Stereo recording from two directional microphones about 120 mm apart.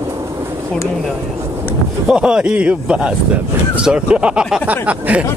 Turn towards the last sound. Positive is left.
turn(degrees=-10)  # may be behind; listen again after turning